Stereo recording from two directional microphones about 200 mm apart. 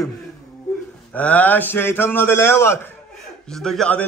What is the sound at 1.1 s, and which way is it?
A man's voice, 5° left (ahead or behind).